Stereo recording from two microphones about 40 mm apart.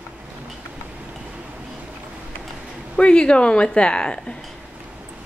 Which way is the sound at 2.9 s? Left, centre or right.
Left.